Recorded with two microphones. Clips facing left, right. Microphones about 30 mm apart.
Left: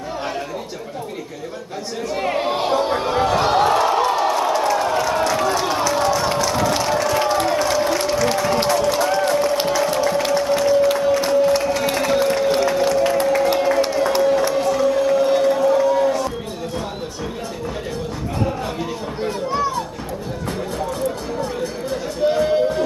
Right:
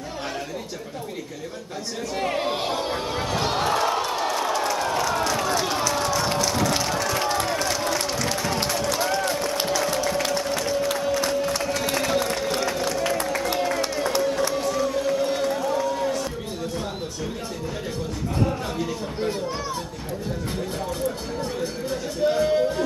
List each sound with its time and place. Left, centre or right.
2.1 s a sound: centre
8.6 s run: centre
9.7 s music: centre
18.4 s music: centre
22.2 s music: centre